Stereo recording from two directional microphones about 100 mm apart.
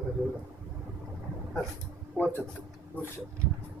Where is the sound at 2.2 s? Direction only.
20° left (ahead or behind).